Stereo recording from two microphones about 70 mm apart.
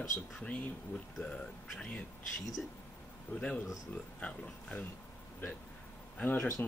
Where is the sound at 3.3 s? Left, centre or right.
Centre.